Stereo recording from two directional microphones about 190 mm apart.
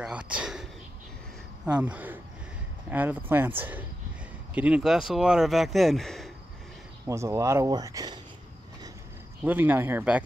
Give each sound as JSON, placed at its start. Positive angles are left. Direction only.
{"t": 0.0, "sound": "a sound", "side_deg": -5}
{"t": 1.7, "sound": "speech", "side_deg": -10}
{"t": 7.1, "sound": "speech", "side_deg": -15}
{"t": 9.4, "sound": "speech", "side_deg": -10}